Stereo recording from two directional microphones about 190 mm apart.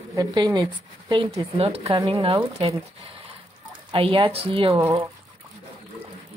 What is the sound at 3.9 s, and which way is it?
Speech, 25° right (ahead or behind).